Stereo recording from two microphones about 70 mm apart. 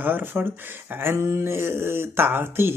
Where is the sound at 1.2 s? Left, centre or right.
Right.